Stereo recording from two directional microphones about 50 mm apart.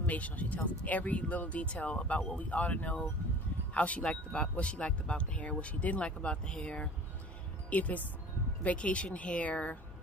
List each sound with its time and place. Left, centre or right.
0.0 s speech: left